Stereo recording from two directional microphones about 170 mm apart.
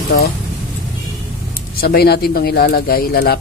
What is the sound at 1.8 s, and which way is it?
A man's voice, 65° left (ahead or behind).